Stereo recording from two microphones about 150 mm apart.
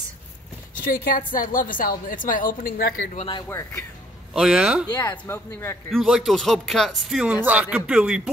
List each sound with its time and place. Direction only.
1.0 s a woman's voice: 65° left (ahead or behind)
3.2 s speech: 35° left (ahead or behind)
3.4 s speech: 20° left (ahead or behind)
4.3 s speech: 5° right (ahead or behind)
4.8 s speech: 30° left (ahead or behind)
5.2 s speech: 15° left (ahead or behind)
5.9 s speech: 5° right (ahead or behind)